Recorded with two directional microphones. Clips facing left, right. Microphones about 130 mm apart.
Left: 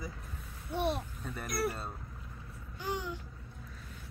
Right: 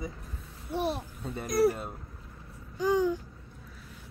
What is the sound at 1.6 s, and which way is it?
Speech, 90° right.